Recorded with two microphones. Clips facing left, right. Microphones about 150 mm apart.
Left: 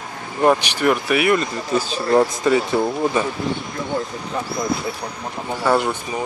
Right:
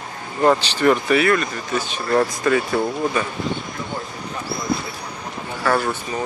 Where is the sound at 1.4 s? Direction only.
35° left (ahead or behind).